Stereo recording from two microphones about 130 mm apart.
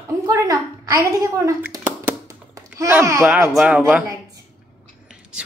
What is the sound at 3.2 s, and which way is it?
Speech, 10° right (ahead or behind).